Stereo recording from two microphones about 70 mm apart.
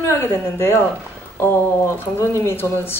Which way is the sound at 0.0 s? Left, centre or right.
Left.